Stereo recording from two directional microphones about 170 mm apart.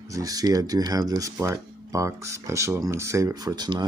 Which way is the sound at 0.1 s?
20° right (ahead or behind).